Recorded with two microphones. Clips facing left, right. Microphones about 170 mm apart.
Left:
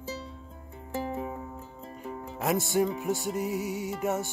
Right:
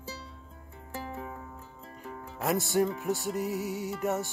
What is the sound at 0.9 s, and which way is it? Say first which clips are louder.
Music: left 6 dB; 20° left (ahead or behind).